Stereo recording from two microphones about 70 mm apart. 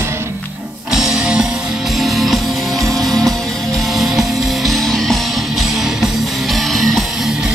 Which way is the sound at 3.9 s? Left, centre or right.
Centre.